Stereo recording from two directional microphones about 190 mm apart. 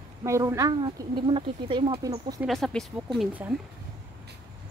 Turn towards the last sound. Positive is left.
turn(degrees=-10)  # may be behind; listen again after turning